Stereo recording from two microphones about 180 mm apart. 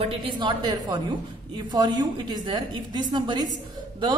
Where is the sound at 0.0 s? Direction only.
30° right (ahead or behind).